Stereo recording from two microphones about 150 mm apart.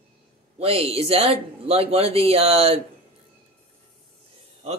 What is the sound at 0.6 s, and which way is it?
Speech, 40° right (ahead or behind).